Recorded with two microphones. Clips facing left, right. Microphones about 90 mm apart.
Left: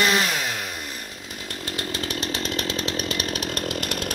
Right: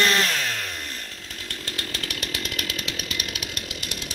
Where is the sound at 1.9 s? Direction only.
25° left (ahead or behind).